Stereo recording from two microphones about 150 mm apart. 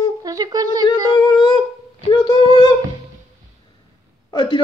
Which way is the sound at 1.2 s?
30° left (ahead or behind).